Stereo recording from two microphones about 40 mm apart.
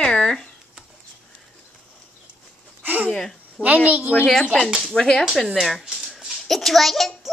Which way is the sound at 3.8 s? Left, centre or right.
Right.